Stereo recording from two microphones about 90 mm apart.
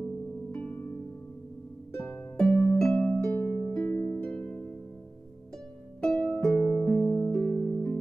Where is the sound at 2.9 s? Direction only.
20° left (ahead or behind).